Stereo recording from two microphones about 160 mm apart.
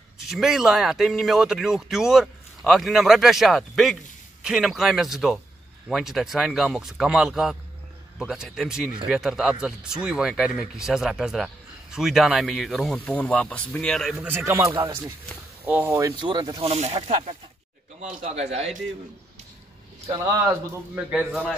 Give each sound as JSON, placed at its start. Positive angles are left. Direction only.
{"t": 0.2, "sound": "speech", "side_deg": 0}
{"t": 16.2, "sound": "speech", "side_deg": -30}
{"t": 16.7, "sound": "a man's voice", "side_deg": -40}
{"t": 18.2, "sound": "a man's voice", "side_deg": -40}
{"t": 20.9, "sound": "speech", "side_deg": -10}